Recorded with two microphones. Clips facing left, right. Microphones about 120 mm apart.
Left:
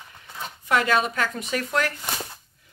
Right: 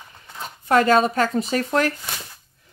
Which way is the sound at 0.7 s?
40° right (ahead or behind).